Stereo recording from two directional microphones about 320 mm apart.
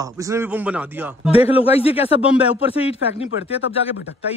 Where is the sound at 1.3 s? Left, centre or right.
Centre.